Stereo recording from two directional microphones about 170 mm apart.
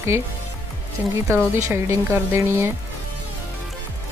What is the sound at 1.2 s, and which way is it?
Speech, 15° right (ahead or behind).